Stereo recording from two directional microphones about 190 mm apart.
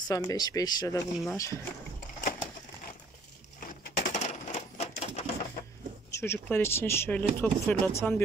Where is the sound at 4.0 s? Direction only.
35° left (ahead or behind).